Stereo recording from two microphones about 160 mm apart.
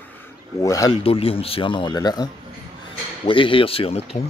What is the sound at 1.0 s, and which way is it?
Speech, 35° left (ahead or behind).